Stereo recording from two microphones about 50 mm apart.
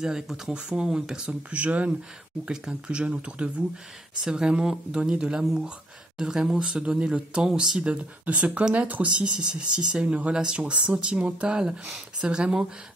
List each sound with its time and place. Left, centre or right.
0.0 s speech: centre
1.6 s speech: right
2.4 s speech: centre
10.6 s speech: right